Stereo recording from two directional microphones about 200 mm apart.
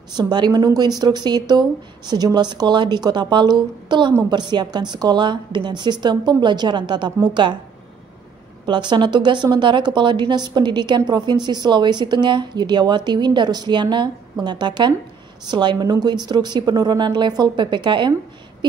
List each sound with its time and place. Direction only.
0.1 s a woman's voice: 20° right (ahead or behind)
8.6 s a woman's voice: 20° right (ahead or behind)